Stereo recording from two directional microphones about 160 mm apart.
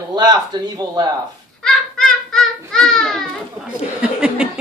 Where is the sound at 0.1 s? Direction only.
25° right (ahead or behind).